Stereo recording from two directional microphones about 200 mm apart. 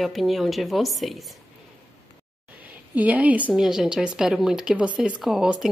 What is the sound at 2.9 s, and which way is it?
A woman's voice, 5° right (ahead or behind).